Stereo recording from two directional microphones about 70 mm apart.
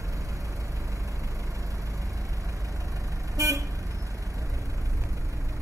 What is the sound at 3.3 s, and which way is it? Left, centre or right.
Vehicle, right.